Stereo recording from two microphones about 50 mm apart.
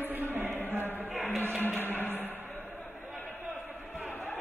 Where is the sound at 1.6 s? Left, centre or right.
Left.